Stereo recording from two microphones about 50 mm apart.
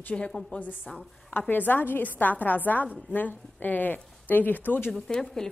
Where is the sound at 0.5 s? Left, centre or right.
Left.